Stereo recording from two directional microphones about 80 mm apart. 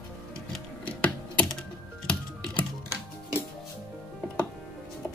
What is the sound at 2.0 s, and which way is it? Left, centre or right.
Typing, centre.